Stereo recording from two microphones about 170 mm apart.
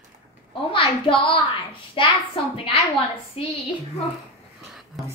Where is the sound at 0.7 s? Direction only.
30° left (ahead or behind).